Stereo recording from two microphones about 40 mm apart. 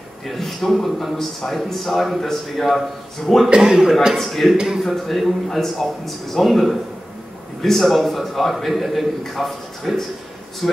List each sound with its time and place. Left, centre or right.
0.3 s a man's voice: centre
3.4 s a man's voice: centre
4.1 s a man's voice: centre
4.6 s a man's voice: centre
4.8 s a man's voice: centre
10.6 s a man's voice: centre